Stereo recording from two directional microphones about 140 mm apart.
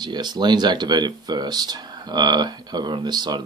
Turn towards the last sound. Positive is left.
turn(degrees=-30)  # may be behind; listen again after turning